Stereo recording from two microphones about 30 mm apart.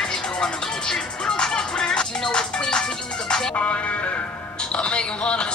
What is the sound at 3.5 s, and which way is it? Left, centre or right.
Music, left.